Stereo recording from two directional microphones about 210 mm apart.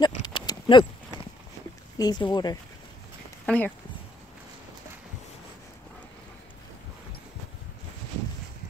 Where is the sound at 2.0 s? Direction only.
20° left (ahead or behind).